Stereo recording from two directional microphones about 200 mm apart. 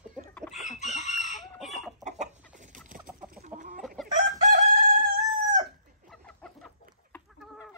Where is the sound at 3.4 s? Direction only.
40° right (ahead or behind).